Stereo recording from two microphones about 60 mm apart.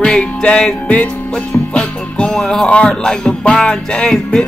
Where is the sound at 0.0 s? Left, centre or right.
Centre.